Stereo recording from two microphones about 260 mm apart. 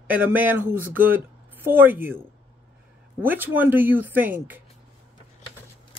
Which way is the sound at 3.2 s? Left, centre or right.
Centre.